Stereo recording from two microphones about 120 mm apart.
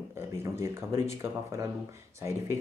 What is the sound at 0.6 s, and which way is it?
Speech, 25° right (ahead or behind).